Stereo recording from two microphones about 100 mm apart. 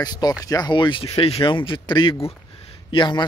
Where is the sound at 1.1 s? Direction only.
80° left.